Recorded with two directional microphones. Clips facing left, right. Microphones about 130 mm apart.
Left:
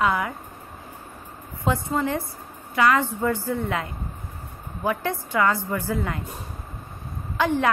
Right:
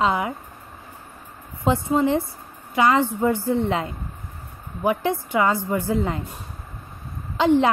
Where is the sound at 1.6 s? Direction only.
20° right (ahead or behind).